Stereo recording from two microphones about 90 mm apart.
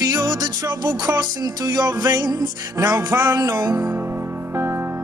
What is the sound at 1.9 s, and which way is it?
Music, 30° right (ahead or behind).